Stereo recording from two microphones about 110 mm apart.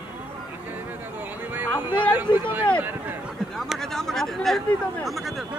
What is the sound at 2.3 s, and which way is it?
Speech, 45° left (ahead or behind).